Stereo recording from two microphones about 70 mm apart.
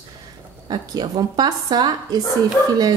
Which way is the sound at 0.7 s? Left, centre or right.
Right.